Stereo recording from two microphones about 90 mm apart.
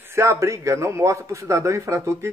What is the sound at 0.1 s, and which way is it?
A man's voice, 35° right (ahead or behind).